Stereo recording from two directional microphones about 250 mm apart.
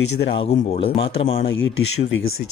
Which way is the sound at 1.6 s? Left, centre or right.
Left.